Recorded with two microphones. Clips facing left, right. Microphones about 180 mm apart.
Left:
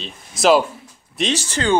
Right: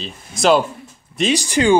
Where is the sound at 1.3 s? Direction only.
15° right (ahead or behind).